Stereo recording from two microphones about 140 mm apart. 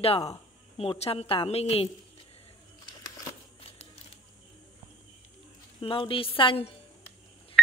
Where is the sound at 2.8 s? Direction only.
25° left (ahead or behind).